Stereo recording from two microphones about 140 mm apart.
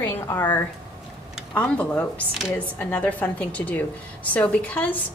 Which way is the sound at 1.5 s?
10° left (ahead or behind).